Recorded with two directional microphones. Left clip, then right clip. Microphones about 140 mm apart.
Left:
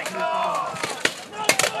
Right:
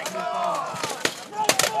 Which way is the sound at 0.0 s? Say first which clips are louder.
Left 2 dB; centre (ahead or behind).